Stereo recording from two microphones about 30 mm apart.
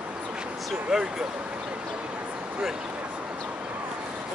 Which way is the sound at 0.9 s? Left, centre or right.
Centre.